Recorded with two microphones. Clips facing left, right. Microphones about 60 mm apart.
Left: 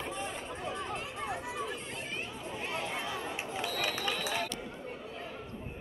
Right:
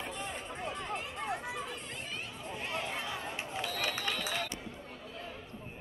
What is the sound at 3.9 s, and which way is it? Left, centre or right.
Run, centre.